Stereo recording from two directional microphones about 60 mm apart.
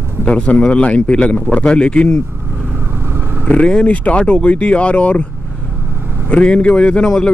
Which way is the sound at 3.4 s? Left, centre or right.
Centre.